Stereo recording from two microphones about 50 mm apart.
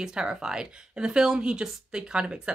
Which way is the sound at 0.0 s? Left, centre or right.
Centre.